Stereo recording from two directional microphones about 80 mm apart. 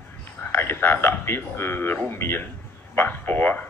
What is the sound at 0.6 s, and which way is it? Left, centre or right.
A man's voice, left.